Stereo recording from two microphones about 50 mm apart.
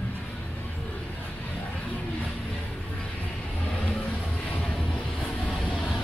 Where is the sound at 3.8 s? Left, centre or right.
Left.